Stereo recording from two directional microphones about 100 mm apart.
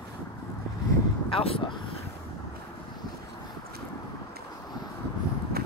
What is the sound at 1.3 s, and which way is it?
Vehicle, 70° left (ahead or behind).